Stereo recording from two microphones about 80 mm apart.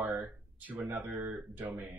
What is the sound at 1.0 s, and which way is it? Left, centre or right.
Speech, centre.